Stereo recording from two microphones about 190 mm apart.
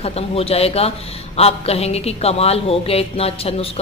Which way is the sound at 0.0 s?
30° left (ahead or behind).